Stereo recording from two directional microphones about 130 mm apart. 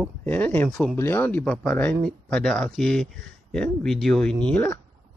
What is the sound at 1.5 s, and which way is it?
Speech, 5° left (ahead or behind).